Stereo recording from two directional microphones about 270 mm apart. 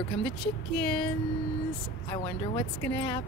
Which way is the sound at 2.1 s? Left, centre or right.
Left.